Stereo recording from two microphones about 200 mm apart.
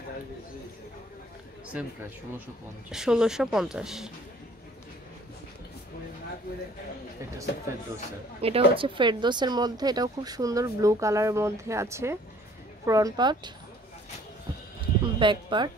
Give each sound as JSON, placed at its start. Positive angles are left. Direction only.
{"t": 1.7, "sound": "speech", "side_deg": -5}
{"t": 8.4, "sound": "speech", "side_deg": -30}
{"t": 14.8, "sound": "speech", "side_deg": -25}